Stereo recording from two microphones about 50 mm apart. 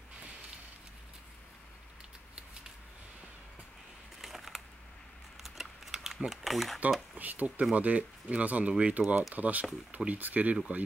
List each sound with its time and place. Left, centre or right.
4.2 s a sound: centre
6.1 s speech: centre
7.2 s speech: right